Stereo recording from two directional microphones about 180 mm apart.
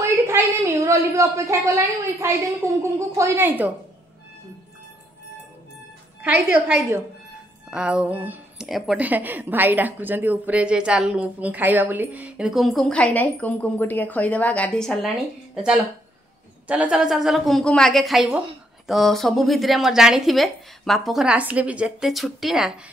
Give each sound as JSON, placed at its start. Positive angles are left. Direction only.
{"t": 0.0, "sound": "a woman's voice", "side_deg": -15}
{"t": 6.2, "sound": "a woman's voice", "side_deg": -5}
{"t": 16.6, "sound": "speech", "side_deg": -5}